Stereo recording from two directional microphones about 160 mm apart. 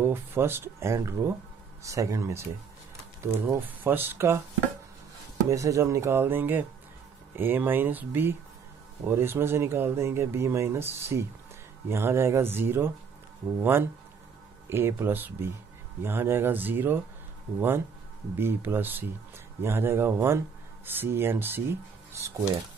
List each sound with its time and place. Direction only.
0.0 s speech: 15° right (ahead or behind)
5.5 s speech: 20° right (ahead or behind)